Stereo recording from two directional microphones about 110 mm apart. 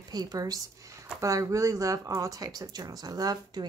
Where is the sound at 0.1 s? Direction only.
35° right (ahead or behind).